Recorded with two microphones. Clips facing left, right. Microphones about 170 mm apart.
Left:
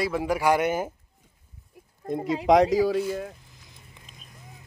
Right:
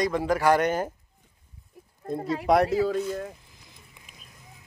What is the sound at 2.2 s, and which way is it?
Speech, 20° left (ahead or behind).